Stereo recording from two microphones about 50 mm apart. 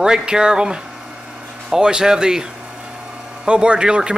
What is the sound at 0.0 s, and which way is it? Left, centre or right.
Speech, centre.